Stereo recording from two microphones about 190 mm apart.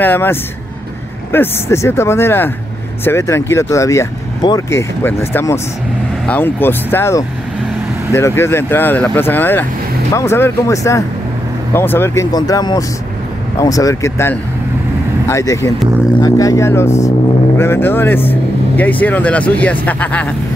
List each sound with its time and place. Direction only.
0.0 s speech: 10° left (ahead or behind)